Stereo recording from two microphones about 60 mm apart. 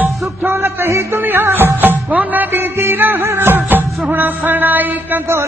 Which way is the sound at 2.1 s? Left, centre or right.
Right.